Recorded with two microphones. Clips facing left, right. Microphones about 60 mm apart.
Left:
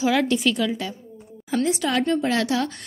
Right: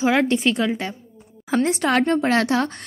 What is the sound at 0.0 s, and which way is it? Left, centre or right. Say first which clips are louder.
A woman's voice: right 2 dB; right.